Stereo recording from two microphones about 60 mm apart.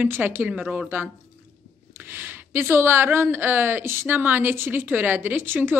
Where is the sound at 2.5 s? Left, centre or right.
Right.